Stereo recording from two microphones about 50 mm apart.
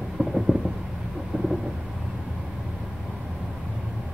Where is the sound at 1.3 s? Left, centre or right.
Right.